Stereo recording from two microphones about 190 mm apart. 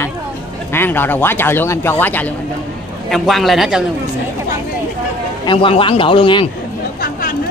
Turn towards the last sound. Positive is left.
turn(degrees=25)  # may be behind; listen again after turning